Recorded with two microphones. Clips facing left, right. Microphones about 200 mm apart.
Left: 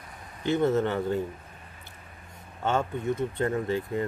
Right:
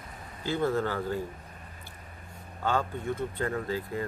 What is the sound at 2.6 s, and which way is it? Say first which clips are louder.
Speech: left 2 dB; 20° left (ahead or behind).